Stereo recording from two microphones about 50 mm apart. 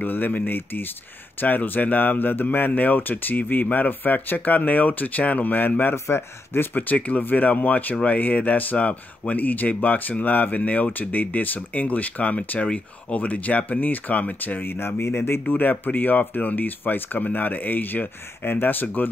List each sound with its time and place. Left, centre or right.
0.0 s speech: left
6.0 s speech: left
6.7 s speech: left
13.2 s speech: left
15.4 s speech: left